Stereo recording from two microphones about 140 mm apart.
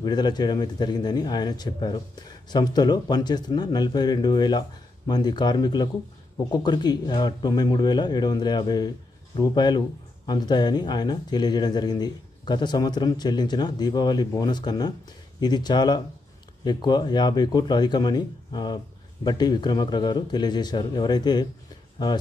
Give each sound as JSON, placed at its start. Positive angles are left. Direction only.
{"t": 0.0, "sound": "speech", "side_deg": 30}